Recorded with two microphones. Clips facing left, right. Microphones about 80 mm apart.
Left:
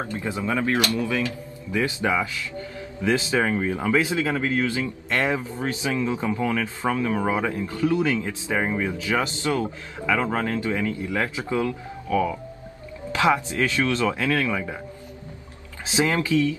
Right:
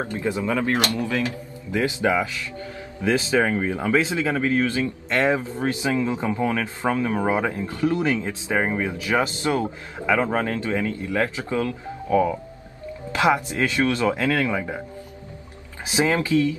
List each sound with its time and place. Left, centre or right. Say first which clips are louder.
0.1 s speech: right 3 dB; centre
0.5 s speech: left 2 dB; right
12.1 s speech: right 3 dB; right
15.8 s speech: right 1 dB; centre